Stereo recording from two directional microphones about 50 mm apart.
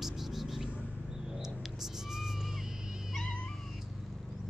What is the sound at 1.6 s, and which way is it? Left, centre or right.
Cat, centre.